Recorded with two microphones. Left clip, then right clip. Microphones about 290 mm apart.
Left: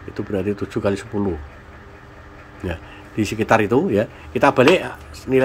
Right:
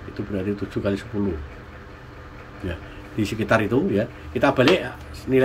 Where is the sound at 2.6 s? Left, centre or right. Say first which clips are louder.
Left 4 dB; centre.